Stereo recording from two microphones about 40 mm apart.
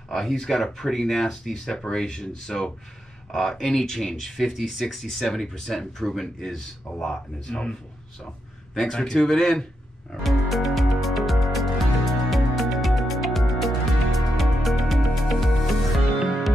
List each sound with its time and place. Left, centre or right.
0.1 s speech: centre
8.7 s speech: centre
10.2 s music: centre